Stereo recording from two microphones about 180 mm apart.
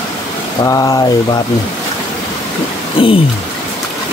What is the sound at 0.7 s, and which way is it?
Speech, 20° left (ahead or behind).